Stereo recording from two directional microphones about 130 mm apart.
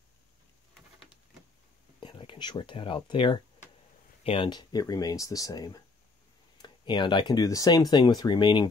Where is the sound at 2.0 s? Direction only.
40° left (ahead or behind).